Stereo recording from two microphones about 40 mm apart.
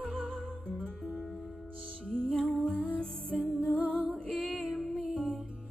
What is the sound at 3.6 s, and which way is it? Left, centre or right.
Music, right.